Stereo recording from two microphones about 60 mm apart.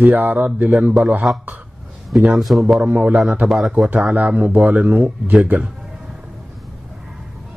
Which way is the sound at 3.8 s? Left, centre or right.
Right.